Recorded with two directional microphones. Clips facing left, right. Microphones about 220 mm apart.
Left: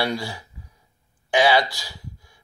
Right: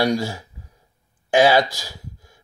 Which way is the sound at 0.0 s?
45° right (ahead or behind).